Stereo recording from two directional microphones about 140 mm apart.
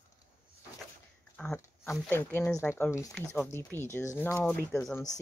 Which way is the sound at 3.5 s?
15° left (ahead or behind).